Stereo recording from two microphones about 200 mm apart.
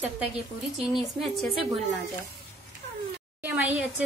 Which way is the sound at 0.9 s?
Centre (ahead or behind).